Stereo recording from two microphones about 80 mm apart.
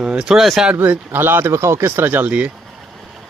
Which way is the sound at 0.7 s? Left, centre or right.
Centre.